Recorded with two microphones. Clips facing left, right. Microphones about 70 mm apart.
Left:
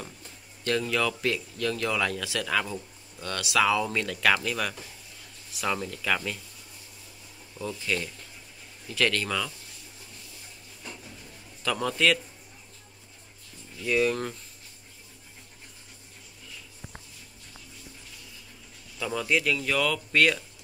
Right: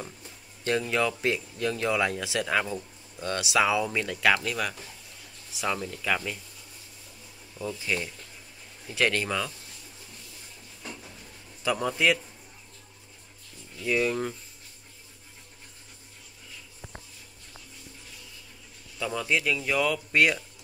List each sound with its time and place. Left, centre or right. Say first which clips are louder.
0.7 s speech: right 1 dB; right
3.8 s speech: right 1 dB; centre
7.8 s speech: even; centre
8.9 s speech: right 1 dB; right
11.6 s speech: even; centre
13.8 s speech: left 1 dB; centre
18.9 s speech: left 1 dB; centre